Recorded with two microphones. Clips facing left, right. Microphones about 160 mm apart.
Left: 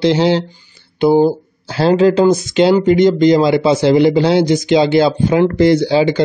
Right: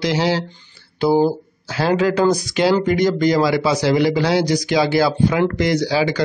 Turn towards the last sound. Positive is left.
turn(degrees=25)  # may be behind; listen again after turning